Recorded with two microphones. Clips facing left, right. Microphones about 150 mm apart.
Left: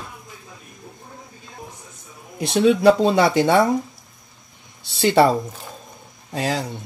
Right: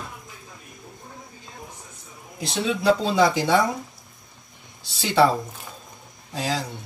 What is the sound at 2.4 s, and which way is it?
Speech, 60° left (ahead or behind).